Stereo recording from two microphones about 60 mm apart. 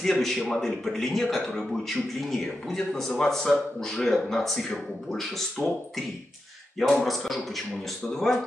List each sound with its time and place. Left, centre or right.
0.0 s a man's voice: centre